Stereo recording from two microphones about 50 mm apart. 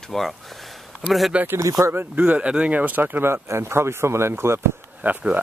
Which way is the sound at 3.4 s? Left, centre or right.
Right.